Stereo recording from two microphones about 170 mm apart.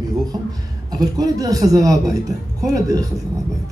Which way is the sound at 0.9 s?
20° right (ahead or behind).